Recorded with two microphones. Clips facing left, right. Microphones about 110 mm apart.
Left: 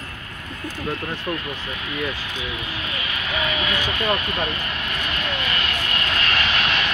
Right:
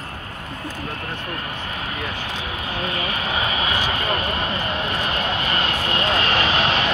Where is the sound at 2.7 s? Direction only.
35° right (ahead or behind).